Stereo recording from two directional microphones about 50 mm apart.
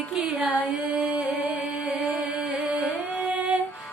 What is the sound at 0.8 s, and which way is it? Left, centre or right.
Music, right.